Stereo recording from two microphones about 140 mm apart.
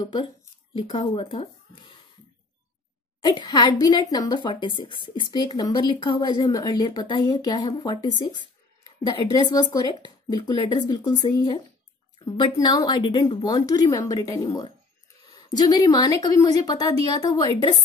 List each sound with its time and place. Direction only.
0.0 s a woman's voice: 35° left (ahead or behind)
3.2 s a woman's voice: 30° left (ahead or behind)